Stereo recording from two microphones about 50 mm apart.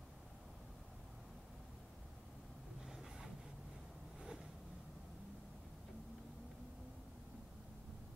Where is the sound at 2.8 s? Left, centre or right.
Centre.